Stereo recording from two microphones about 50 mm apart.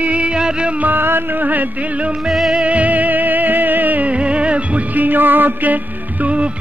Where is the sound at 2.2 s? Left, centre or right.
Centre.